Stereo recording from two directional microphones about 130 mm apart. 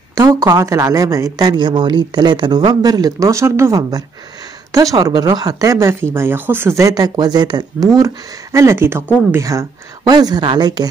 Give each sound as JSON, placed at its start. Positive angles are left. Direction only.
{"t": 0.3, "sound": "speech", "side_deg": -25}